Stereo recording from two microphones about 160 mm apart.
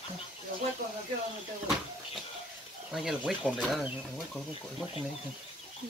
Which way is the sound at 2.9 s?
5° right (ahead or behind).